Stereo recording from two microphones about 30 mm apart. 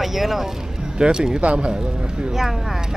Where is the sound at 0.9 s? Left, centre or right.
Right.